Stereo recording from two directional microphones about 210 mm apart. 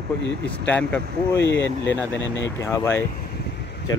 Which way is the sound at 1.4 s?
60° left (ahead or behind).